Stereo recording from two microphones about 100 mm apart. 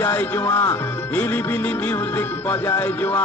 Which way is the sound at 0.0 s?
25° left (ahead or behind).